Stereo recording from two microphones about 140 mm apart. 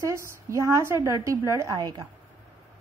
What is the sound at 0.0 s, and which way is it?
A woman's voice, 20° right (ahead or behind).